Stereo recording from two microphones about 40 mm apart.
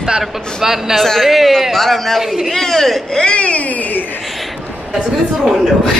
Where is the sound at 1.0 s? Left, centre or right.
Centre.